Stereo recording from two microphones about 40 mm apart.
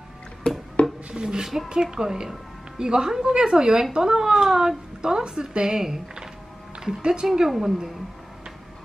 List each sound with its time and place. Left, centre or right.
0.5 s a sound: centre
1.1 s a woman's voice: centre
7.2 s a woman's voice: centre